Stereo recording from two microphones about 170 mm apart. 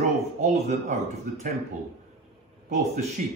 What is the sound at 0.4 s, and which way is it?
Speech, 45° right (ahead or behind).